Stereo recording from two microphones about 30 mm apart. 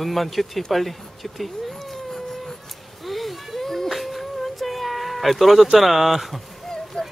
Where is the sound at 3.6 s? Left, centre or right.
Centre.